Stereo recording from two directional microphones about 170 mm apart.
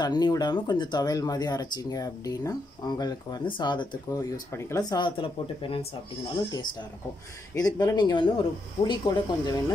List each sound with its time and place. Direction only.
0.0 s speech: 25° left (ahead or behind)
7.5 s speech: 20° left (ahead or behind)